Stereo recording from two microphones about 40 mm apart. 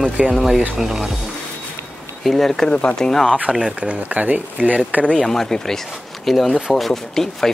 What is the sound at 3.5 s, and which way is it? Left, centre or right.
Speech, centre.